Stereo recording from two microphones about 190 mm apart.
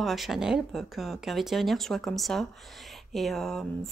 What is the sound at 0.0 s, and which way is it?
A woman's voice, centre (ahead or behind).